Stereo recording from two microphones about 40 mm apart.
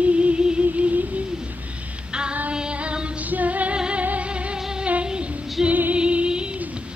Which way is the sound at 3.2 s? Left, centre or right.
Right.